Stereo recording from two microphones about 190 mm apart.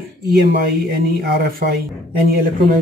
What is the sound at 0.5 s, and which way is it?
Speech, 55° right (ahead or behind).